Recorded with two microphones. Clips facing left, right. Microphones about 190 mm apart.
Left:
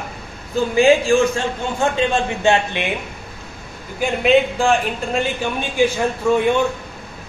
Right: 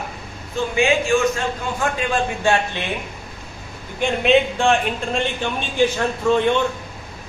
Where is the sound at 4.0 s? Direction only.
Centre (ahead or behind).